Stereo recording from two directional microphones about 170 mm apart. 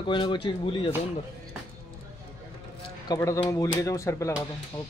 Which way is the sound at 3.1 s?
20° left (ahead or behind).